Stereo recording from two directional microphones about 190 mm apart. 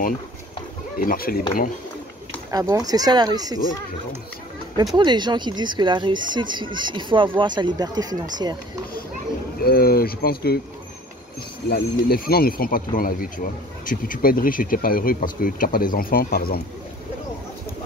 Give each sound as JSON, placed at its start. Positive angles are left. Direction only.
{"t": 0.9, "sound": "speech", "side_deg": 50}
{"t": 2.5, "sound": "speech", "side_deg": -20}
{"t": 4.9, "sound": "speech", "side_deg": -25}
{"t": 9.6, "sound": "speech", "side_deg": 50}
{"t": 11.7, "sound": "speech", "side_deg": 55}